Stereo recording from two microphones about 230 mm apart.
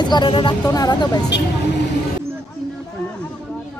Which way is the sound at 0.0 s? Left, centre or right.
Centre.